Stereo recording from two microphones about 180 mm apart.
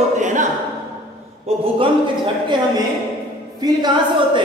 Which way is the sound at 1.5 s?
35° right (ahead or behind).